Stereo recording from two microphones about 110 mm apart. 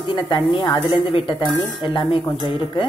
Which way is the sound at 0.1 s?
45° left (ahead or behind).